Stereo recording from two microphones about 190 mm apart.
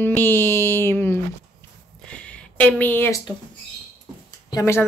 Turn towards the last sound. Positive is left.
turn(degrees=15)  # may be behind; listen again after turning